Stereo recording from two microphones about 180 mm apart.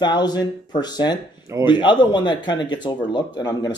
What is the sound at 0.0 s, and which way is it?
Speech, 25° left (ahead or behind).